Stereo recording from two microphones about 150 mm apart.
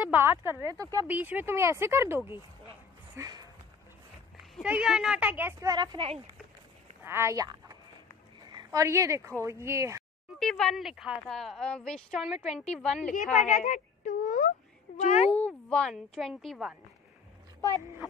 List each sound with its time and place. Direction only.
0.0 s speech: 15° right (ahead or behind)
4.4 s speech: 5° right (ahead or behind)
5.7 s speech: 30° right (ahead or behind)
7.0 s speech: 15° right (ahead or behind)
10.4 s a woman's voice: 5° left (ahead or behind)
13.1 s speech: 60° left (ahead or behind)
15.0 s speech: 50° left (ahead or behind)
15.3 s a woman's voice: 10° left (ahead or behind)